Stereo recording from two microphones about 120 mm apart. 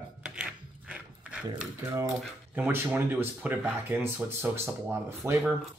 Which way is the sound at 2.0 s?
15° right (ahead or behind).